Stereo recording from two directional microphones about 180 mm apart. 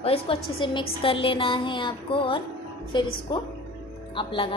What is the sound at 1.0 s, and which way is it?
Music, 30° left (ahead or behind).